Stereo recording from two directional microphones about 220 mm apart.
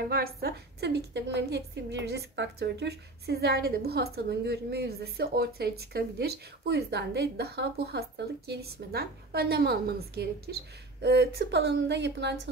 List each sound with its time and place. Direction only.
0.1 s a woman's voice: 45° right (ahead or behind)